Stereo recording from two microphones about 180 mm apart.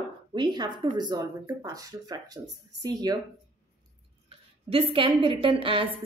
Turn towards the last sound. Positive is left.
turn(degrees=-30)  # may be behind; listen again after turning